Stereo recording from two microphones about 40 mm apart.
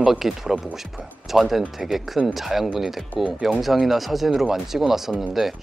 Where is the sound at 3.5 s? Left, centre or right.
Centre.